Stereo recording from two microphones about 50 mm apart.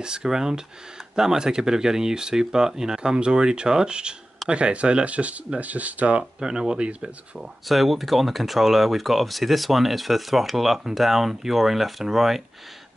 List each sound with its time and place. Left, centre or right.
0.0 s speech: centre
6.4 s speech: centre
7.3 s speech: centre